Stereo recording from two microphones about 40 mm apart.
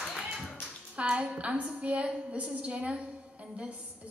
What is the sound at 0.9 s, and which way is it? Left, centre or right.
A woman's voice, right.